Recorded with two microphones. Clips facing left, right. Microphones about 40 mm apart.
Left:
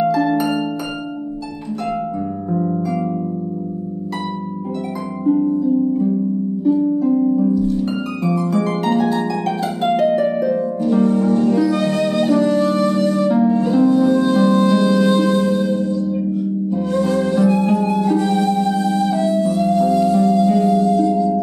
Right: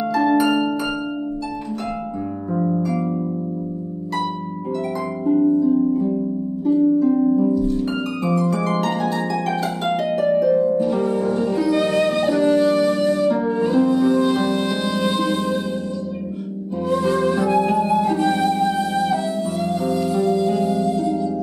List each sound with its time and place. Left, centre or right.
0.1 s harp: centre
2.6 s harp: centre
5.2 s harp: centre
6.6 s harp: centre
7.3 s music: centre
8.3 s harp: centre
10.8 s music: centre
13.4 s music: centre
13.7 s music: centre
16.9 s music: centre